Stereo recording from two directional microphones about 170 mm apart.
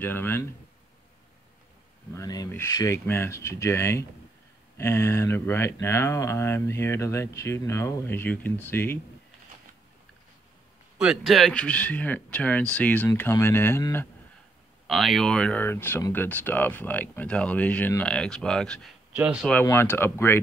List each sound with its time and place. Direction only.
0.0 s speech: 10° left (ahead or behind)
2.1 s speech: 20° left (ahead or behind)
11.0 s speech: centre (ahead or behind); by 14.0 s 15° left (ahead or behind)
14.9 s speech: centre (ahead or behind)
19.6 s speech: 15° left (ahead or behind)